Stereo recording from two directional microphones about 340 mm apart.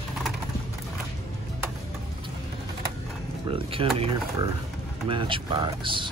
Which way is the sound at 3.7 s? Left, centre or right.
Centre.